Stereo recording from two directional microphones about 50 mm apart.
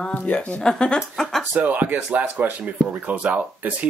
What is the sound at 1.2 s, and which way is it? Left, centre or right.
Speech, centre.